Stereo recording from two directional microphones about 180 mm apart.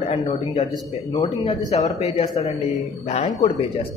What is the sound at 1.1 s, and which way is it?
A man's voice, 25° left (ahead or behind).